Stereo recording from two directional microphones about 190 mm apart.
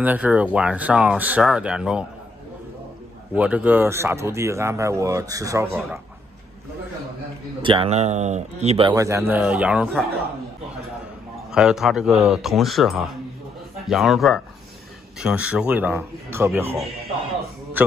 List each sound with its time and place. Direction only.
0.0 s speech: 10° right (ahead or behind)
3.3 s speech: 5° right (ahead or behind)
7.6 s speech: 30° right (ahead or behind)
8.9 s speech: 15° right (ahead or behind)
11.5 s speech: centre (ahead or behind)